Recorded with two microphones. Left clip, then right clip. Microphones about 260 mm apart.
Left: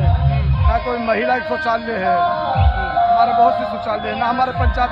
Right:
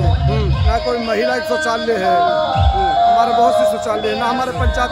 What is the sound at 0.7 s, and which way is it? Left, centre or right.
A man's voice, centre.